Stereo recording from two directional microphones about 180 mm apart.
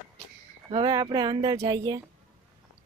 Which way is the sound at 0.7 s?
25° right (ahead or behind).